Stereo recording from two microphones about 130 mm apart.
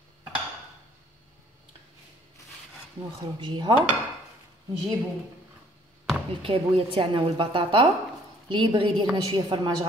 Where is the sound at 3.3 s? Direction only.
35° right (ahead or behind).